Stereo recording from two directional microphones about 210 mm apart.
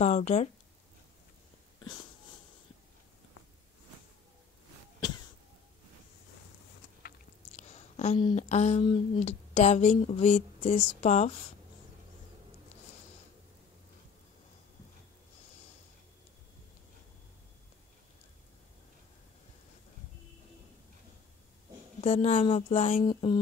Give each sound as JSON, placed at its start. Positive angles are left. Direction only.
{"t": 0.0, "sound": "speech", "side_deg": 35}
{"t": 7.5, "sound": "speech", "side_deg": 30}
{"t": 22.0, "sound": "speech", "side_deg": 30}